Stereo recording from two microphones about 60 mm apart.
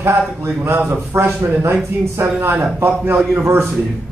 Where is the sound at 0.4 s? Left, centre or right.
Right.